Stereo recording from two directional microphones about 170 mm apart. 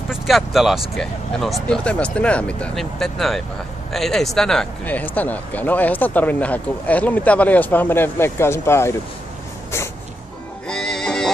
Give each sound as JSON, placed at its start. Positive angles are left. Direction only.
{"t": 0.1, "sound": "speech", "side_deg": 0}
{"t": 10.7, "sound": "music", "side_deg": 5}